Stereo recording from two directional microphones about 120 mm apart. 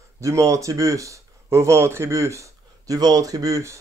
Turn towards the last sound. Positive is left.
turn(degrees=-25)  # may be behind; listen again after turning